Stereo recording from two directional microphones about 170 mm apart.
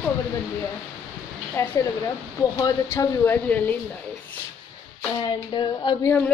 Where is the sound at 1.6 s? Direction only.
15° left (ahead or behind).